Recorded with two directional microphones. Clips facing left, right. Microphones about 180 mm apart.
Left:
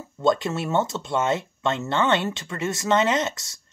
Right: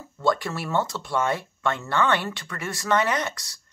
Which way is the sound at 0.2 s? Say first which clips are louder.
Left 3 dB; 20° left (ahead or behind).